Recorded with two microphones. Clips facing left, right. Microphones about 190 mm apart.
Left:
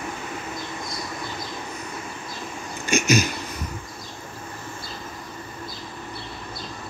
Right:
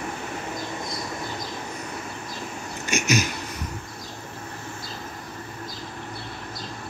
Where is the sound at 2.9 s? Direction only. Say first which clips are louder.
Left 3 dB; 35° left (ahead or behind).